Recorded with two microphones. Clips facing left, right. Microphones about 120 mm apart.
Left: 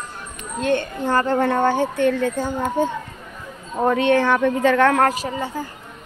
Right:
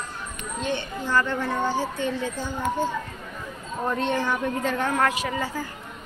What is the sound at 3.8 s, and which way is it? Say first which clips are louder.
Speech: left 8 dB; 80° left.